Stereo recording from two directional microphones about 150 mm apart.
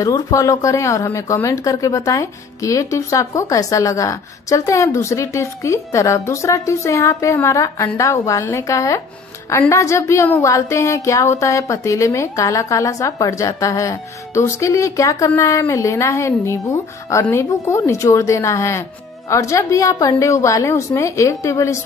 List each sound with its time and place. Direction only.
0.0 s a woman's voice: 20° left (ahead or behind)